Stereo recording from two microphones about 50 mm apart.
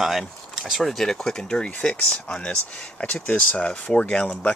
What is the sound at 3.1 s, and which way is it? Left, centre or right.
Speech, left.